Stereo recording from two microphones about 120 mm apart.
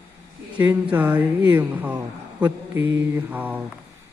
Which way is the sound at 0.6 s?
15° right (ahead or behind).